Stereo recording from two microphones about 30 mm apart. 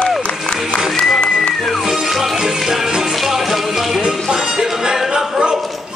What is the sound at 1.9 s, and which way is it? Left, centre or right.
Music, centre.